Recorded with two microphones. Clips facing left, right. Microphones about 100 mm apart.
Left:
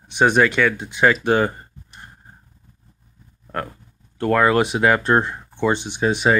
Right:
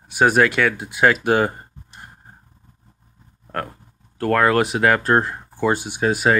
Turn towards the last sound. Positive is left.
turn(degrees=-5)  # may be behind; listen again after turning